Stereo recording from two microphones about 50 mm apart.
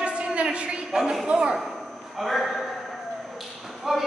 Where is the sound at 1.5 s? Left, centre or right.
Centre.